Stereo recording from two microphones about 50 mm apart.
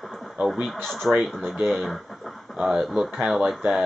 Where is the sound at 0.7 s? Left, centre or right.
Centre.